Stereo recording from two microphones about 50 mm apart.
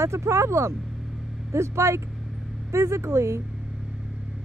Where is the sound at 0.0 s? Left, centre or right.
Right.